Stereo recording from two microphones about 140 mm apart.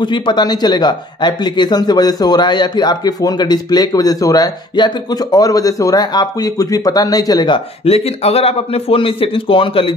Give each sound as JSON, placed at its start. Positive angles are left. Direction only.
{"t": 0.0, "sound": "speech", "side_deg": 35}